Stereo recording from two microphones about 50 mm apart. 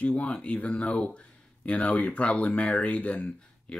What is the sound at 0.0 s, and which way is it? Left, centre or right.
Speech, left.